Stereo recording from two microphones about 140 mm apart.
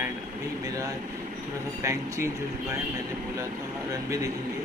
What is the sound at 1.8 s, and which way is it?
Speech, 20° right (ahead or behind).